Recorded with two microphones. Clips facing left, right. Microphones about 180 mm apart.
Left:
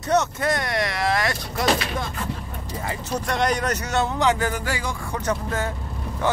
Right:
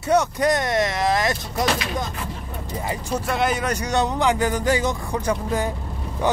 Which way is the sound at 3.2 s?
5° right (ahead or behind).